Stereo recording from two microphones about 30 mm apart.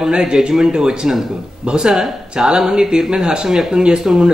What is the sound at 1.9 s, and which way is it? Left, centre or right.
Speech, centre.